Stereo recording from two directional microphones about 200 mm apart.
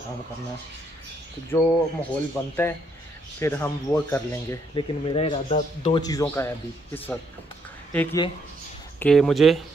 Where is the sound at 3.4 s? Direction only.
10° left (ahead or behind); by 6.0 s 30° left (ahead or behind).